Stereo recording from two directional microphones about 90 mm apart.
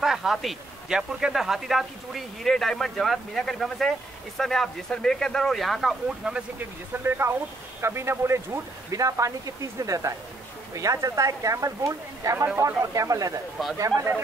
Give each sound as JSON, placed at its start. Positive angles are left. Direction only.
{"t": 0.0, "sound": "a man's voice", "side_deg": -5}
{"t": 7.0, "sound": "speech", "side_deg": -25}